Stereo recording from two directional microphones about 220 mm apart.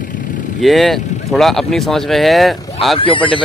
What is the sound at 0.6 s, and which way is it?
Speech, centre (ahead or behind).